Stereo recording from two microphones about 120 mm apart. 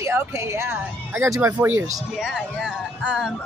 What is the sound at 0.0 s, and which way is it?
Speech, 25° right (ahead or behind).